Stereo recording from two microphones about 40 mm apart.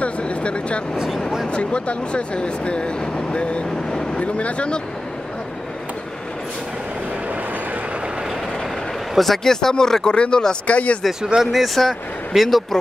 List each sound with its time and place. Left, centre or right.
0.0 s a sound: left
0.9 s speech: centre
1.5 s speech: left
9.1 s speech: centre; by 10.8 s left
11.5 s speech: centre